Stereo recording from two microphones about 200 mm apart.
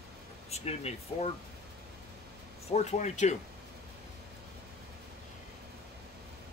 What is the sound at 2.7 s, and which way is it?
Speech, 35° left (ahead or behind).